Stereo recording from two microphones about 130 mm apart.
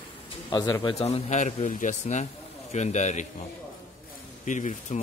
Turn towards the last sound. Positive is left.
turn(degrees=70)  # may be behind; listen again after turning